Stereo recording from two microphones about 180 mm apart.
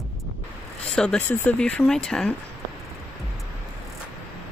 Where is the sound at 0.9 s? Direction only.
5° left (ahead or behind).